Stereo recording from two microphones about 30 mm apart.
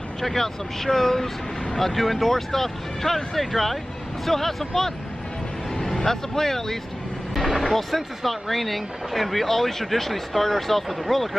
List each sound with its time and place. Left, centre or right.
0.2 s speech: centre
7.3 s speech: centre